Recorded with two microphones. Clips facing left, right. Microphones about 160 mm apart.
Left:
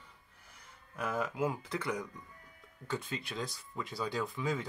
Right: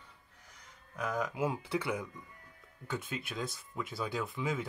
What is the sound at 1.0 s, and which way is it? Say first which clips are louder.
Speech: even; 5° left (ahead or behind).